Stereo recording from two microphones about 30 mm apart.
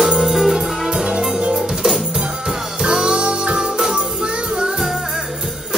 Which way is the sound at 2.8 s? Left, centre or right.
Right.